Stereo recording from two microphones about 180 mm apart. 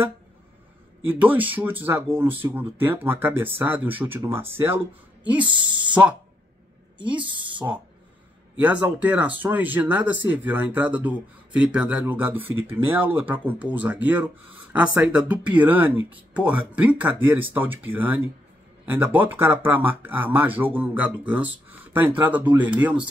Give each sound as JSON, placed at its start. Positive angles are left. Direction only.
{"t": 1.0, "sound": "speech", "side_deg": -10}
{"t": 5.5, "sound": "speech", "side_deg": -25}
{"t": 7.2, "sound": "speech", "side_deg": -25}
{"t": 8.5, "sound": "speech", "side_deg": -5}